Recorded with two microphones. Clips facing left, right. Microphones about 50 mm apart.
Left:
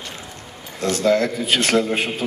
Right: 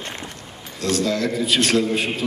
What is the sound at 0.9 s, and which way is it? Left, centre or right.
A man's voice, left.